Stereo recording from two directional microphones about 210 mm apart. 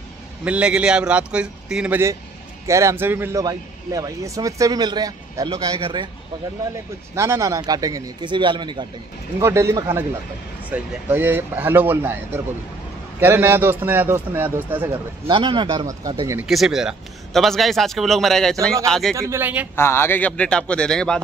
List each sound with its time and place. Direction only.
0.5 s a man's voice: 5° right (ahead or behind); by 6.0 s 25° right (ahead or behind)
7.2 s a man's voice: 15° right (ahead or behind)
15.2 s a man's voice: 25° right (ahead or behind)
16.4 s a man's voice: centre (ahead or behind)
19.1 s a man's voice: 15° right (ahead or behind)
19.7 s a man's voice: 10° left (ahead or behind)